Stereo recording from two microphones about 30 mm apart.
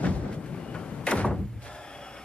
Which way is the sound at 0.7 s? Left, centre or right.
Left.